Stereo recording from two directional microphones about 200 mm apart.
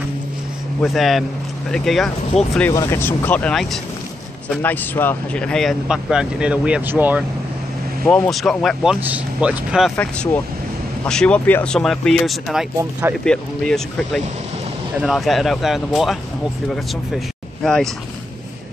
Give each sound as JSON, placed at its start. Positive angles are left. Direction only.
{"t": 0.8, "sound": "speech", "side_deg": 0}
{"t": 2.3, "sound": "speech", "side_deg": 35}
{"t": 2.7, "sound": "speech", "side_deg": 15}
{"t": 8.0, "sound": "speech", "side_deg": 0}